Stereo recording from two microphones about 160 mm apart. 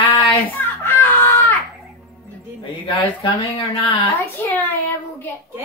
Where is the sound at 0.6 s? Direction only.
15° left (ahead or behind).